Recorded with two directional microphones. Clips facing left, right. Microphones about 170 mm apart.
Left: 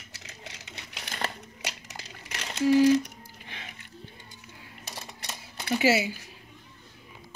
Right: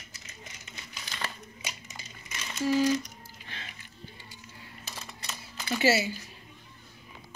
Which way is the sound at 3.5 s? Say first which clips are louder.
Left 1 dB; 15° left (ahead or behind).